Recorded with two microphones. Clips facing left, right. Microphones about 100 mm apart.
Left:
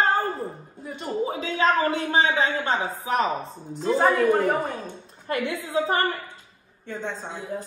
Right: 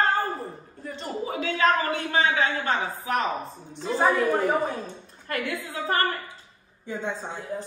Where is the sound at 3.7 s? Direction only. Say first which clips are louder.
Left 2 dB; centre (ahead or behind).